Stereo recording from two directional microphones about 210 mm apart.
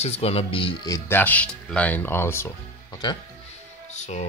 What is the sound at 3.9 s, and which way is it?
Speech, 35° left (ahead or behind).